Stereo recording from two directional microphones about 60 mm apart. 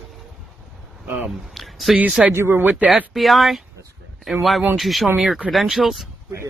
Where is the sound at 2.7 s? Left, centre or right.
Right.